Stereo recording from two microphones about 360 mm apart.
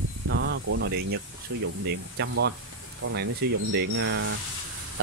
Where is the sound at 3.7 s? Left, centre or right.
Right.